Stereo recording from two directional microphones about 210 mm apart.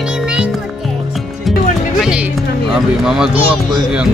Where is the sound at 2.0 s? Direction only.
5° right (ahead or behind).